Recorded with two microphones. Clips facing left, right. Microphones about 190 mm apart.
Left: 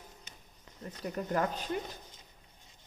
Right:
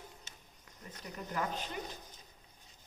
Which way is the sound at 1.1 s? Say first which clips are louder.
Left 6 dB; 45° left (ahead or behind).